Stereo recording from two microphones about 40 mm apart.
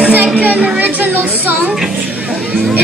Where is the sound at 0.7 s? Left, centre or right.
Right.